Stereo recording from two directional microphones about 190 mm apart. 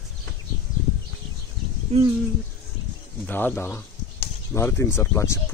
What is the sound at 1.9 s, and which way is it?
Speech, 35° right (ahead or behind).